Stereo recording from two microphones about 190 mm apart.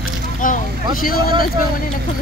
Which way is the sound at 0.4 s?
45° left (ahead or behind).